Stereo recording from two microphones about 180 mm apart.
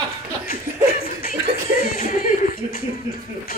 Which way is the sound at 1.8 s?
50° left (ahead or behind).